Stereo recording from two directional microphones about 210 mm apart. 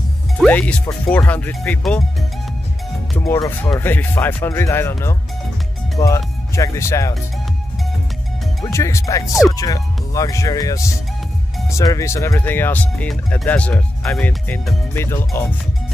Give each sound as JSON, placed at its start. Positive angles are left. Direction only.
{"t": 0.4, "sound": "speech", "side_deg": 5}
{"t": 3.2, "sound": "speech", "side_deg": 15}
{"t": 8.7, "sound": "speech", "side_deg": 15}